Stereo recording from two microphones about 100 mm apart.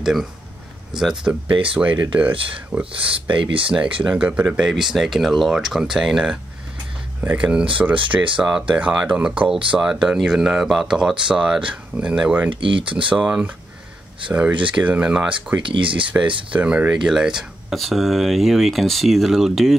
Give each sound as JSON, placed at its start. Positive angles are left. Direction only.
{"t": 0.0, "sound": "speech", "side_deg": 0}
{"t": 3.2, "sound": "speech", "side_deg": -60}
{"t": 3.7, "sound": "speech", "side_deg": -10}
{"t": 7.2, "sound": "speech", "side_deg": -15}
{"t": 12.4, "sound": "speech", "side_deg": -60}
{"t": 12.9, "sound": "speech", "side_deg": -5}
{"t": 15.6, "sound": "speech", "side_deg": -60}
{"t": 16.5, "sound": "speech", "side_deg": -10}